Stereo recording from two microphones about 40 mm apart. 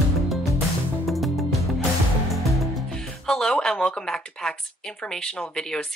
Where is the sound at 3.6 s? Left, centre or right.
Centre.